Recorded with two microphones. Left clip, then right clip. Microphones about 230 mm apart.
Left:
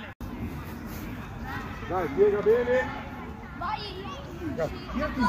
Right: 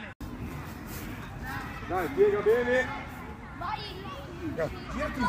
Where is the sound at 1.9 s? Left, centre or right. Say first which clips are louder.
Left 1 dB; right.